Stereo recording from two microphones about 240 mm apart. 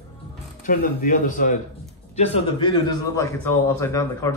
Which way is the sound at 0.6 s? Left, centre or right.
Left.